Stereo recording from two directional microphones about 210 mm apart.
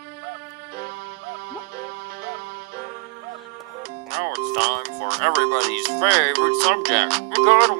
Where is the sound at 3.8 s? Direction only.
50° right (ahead or behind).